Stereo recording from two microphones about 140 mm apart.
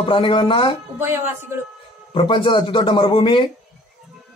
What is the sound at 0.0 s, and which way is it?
Speech, 40° left (ahead or behind).